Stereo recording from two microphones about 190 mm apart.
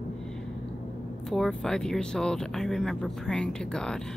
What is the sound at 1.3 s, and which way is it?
Speech, centre (ahead or behind).